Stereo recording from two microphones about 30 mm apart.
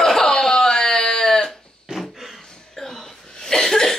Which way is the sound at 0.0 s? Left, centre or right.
Centre.